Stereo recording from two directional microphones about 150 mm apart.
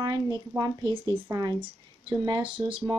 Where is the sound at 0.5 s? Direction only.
25° right (ahead or behind).